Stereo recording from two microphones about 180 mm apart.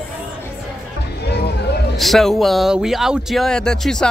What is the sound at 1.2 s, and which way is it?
Music, 65° left (ahead or behind).